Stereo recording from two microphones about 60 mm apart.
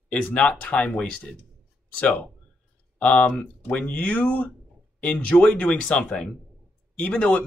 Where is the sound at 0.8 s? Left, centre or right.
Centre.